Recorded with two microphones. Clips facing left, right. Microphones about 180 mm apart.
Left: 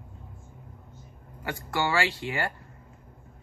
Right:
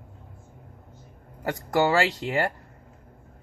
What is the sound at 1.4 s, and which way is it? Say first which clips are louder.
Speech: right 6 dB; 40° right (ahead or behind).